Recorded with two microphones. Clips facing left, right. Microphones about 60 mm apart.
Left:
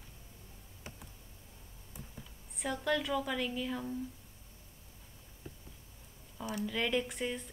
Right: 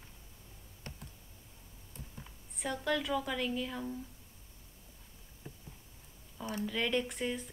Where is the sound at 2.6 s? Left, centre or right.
Centre.